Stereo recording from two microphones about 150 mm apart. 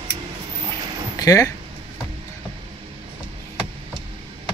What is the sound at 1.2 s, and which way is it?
Speech, 20° left (ahead or behind).